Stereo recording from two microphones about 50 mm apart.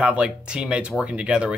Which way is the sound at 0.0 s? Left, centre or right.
Right.